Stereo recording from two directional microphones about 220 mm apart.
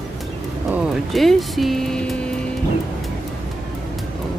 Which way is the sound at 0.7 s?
Centre (ahead or behind).